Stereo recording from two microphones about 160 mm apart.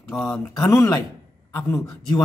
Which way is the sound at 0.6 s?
20° left (ahead or behind).